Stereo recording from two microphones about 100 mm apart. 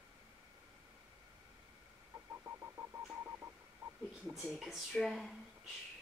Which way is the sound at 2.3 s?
25° right (ahead or behind).